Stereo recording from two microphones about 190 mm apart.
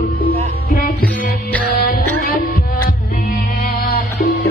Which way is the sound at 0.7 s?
50° left (ahead or behind).